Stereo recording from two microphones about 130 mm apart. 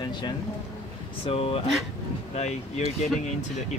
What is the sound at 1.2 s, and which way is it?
Speech, 50° left (ahead or behind).